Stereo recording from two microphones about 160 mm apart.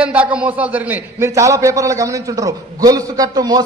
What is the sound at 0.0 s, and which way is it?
A man's voice, 10° right (ahead or behind).